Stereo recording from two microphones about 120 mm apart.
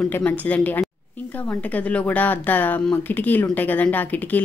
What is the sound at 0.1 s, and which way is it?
Speech, 15° left (ahead or behind).